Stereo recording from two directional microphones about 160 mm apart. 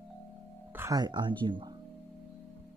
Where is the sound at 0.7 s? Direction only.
15° right (ahead or behind).